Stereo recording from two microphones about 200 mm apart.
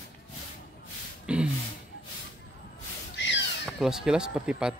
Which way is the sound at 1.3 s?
5° right (ahead or behind).